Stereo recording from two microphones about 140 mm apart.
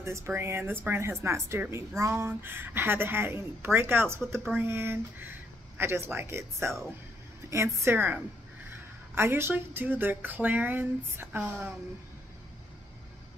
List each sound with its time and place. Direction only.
0.0 s a woman's voice: 20° right (ahead or behind)